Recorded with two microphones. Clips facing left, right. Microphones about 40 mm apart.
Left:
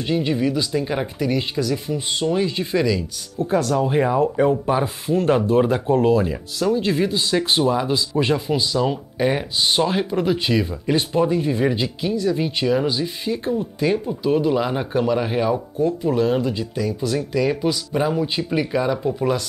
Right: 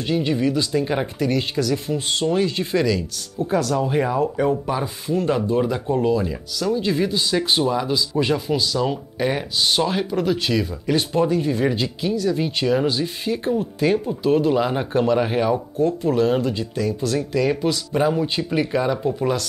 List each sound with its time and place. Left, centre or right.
0.0 s speech: centre
4.6 s speech: centre
15.8 s speech: centre